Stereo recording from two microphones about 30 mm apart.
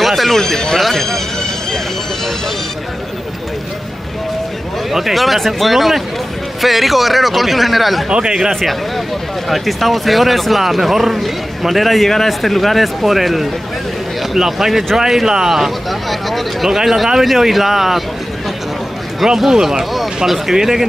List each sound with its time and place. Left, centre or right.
0.0 s a sound: centre
4.9 s speech: centre
8.1 s speech: right
8.5 s speech: centre
15.9 s speech: centre
19.2 s speech: centre